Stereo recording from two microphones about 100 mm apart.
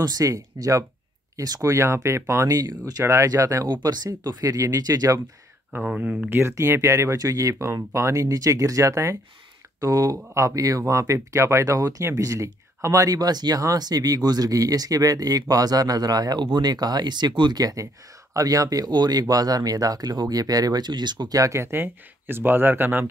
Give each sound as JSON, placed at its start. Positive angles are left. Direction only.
{"t": 0.0, "sound": "speech", "side_deg": -35}
{"t": 3.8, "sound": "speech", "side_deg": -45}
{"t": 5.7, "sound": "speech", "side_deg": -15}
{"t": 6.4, "sound": "speech", "side_deg": -25}